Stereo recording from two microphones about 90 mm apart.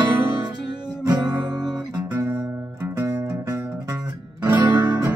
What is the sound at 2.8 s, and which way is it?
Music, 25° right (ahead or behind).